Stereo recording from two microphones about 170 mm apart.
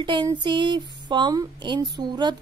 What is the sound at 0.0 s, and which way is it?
A woman's voice, 25° right (ahead or behind).